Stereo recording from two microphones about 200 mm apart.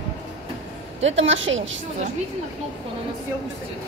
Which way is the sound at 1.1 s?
70° right (ahead or behind).